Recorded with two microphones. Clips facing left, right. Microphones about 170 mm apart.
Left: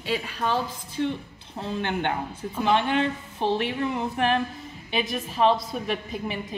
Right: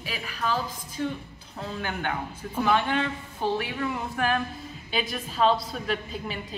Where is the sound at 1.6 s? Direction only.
25° left (ahead or behind).